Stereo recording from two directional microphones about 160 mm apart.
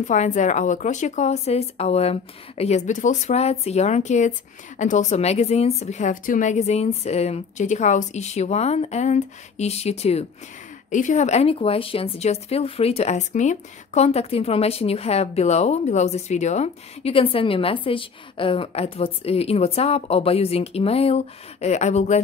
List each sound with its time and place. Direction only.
0.0 s a woman's voice: 50° left (ahead or behind)